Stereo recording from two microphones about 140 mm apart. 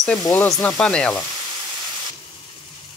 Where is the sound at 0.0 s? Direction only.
5° left (ahead or behind).